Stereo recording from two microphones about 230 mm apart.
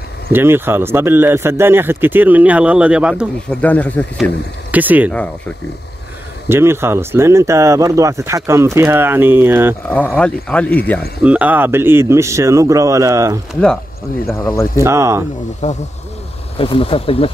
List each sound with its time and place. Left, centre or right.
0.3 s speech: centre
3.6 s speech: centre
4.6 s speech: centre
6.5 s speech: centre
9.8 s speech: centre
11.2 s speech: centre
14.8 s speech: centre
15.6 s speech: left